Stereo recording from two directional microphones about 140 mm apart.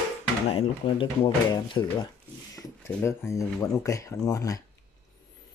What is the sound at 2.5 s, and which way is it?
Speech, 20° left (ahead or behind).